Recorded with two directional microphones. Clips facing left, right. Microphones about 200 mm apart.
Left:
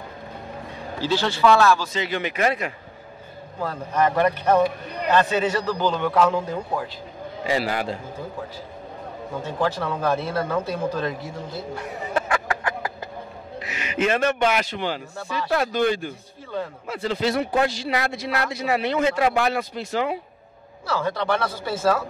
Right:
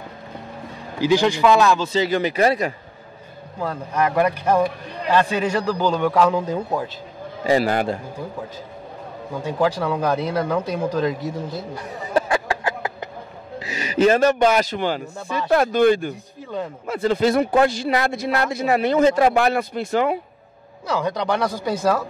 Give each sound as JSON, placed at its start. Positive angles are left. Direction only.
{"t": 1.0, "sound": "a man's voice", "side_deg": -15}
{"t": 1.9, "sound": "speech", "side_deg": -35}
{"t": 3.9, "sound": "a man's voice", "side_deg": -10}
{"t": 7.4, "sound": "a man's voice", "side_deg": -45}
{"t": 9.4, "sound": "a man's voice", "side_deg": -15}
{"t": 12.1, "sound": "a sound", "side_deg": -30}
{"t": 13.6, "sound": "a man's voice", "side_deg": -35}
{"t": 20.8, "sound": "a man's voice", "side_deg": -15}